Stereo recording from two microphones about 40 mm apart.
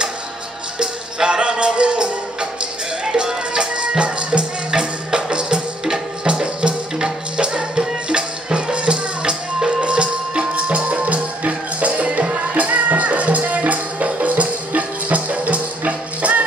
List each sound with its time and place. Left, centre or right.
0.7 s music: right
3.1 s music: right